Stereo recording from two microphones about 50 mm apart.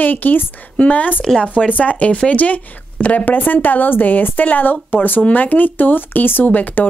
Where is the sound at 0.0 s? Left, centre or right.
Left.